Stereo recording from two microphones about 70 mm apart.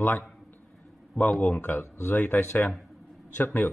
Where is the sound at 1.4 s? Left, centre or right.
Left.